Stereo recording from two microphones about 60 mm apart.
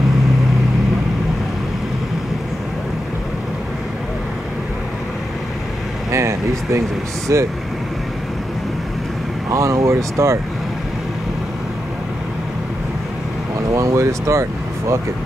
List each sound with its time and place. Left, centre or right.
6.1 s a sound: right
7.3 s speech: right
9.5 s speech: right
13.7 s speech: right